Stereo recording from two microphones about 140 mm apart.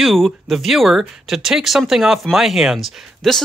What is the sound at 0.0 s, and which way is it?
Speech, centre (ahead or behind).